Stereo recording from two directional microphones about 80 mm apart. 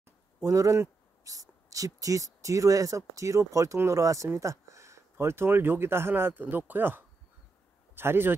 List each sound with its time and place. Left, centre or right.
0.4 s speech: right
4.3 s a sound: right
5.1 s speech: right